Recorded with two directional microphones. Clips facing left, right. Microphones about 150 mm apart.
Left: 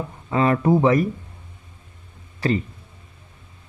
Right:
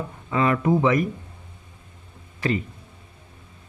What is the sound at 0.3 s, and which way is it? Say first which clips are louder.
Speech: left 2 dB; 35° left (ahead or behind).